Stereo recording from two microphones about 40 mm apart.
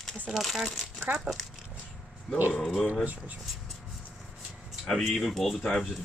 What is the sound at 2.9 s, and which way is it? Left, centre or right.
Speech, right.